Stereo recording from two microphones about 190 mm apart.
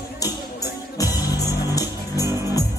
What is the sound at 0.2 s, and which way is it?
Music, 20° left (ahead or behind).